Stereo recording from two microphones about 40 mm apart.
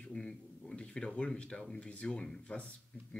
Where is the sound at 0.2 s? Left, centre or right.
Left.